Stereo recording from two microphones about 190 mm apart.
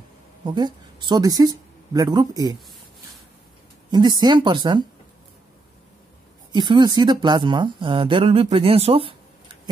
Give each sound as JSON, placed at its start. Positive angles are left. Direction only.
{"t": 0.5, "sound": "speech", "side_deg": -25}
{"t": 3.9, "sound": "speech", "side_deg": -20}
{"t": 6.5, "sound": "speech", "side_deg": -25}